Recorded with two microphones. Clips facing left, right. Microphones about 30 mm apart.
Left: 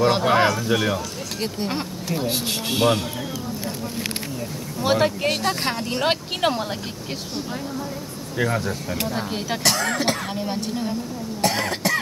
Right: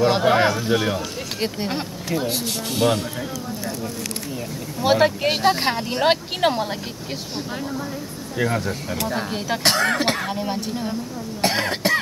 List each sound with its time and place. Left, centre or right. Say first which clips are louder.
0.0 s speech: right 1 dB; centre
0.5 s speech: right 1 dB; centre
2.2 s speech: left 1 dB; centre
4.7 s speech: right 3 dB; centre
8.4 s speech: even; centre
9.6 s speech: right 3 dB; right
9.9 s speech: right 1 dB; centre
10.2 s speech: right 1 dB; centre
11.4 s cough: right 2 dB; right